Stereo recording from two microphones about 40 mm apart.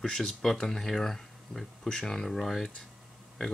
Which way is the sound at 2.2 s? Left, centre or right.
Centre.